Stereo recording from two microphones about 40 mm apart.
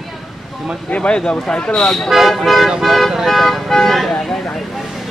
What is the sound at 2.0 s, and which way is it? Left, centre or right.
Speech, centre.